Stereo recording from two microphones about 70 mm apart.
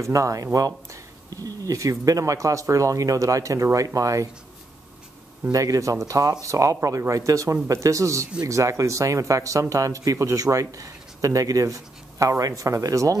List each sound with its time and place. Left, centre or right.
0.0 s speech: right
5.5 s speech: right